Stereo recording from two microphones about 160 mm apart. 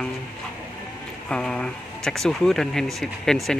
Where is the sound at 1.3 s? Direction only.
5° left (ahead or behind).